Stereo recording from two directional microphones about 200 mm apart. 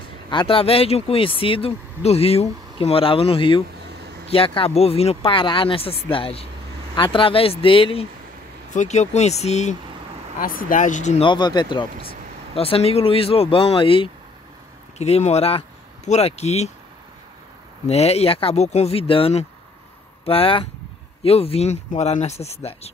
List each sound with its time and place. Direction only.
0.3 s speech: 25° left (ahead or behind)
11.2 s speech: 20° left (ahead or behind)
17.8 s speech: 30° left (ahead or behind)